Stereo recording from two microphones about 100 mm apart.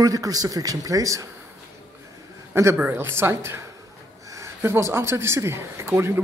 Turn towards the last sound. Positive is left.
turn(degrees=-25)  # may be behind; listen again after turning